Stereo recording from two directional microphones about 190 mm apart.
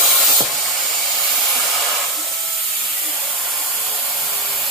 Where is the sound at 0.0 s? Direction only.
Centre (ahead or behind).